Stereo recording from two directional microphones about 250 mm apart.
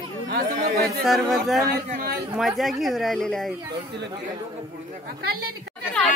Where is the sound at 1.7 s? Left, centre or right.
Right.